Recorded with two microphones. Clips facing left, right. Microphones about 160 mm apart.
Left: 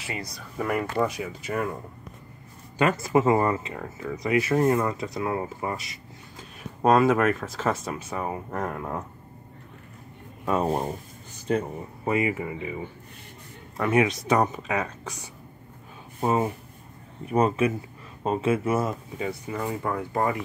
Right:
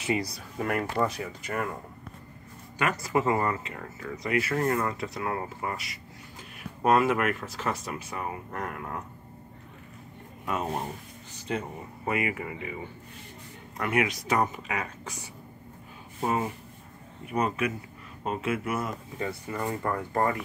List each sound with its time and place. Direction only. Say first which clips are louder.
0.0 s speech: right 6 dB; 25° right (ahead or behind)
0.7 s speech: left 2 dB; 5° left (ahead or behind)
2.8 s speech: left 5 dB; 25° left (ahead or behind)
10.4 s speech: left 6 dB; 40° left (ahead or behind)
12.1 s speech: left 4 dB; 25° left (ahead or behind)
13.7 s speech: left 5 dB; 25° left (ahead or behind)
16.2 s speech: left 4 dB; 25° left (ahead or behind)
19.1 s speech: left 2 dB; 15° left (ahead or behind)